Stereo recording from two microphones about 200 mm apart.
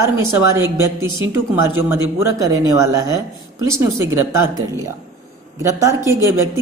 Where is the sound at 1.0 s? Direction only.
20° left (ahead or behind).